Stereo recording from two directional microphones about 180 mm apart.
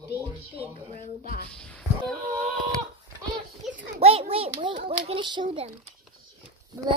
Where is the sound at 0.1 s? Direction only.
60° left (ahead or behind).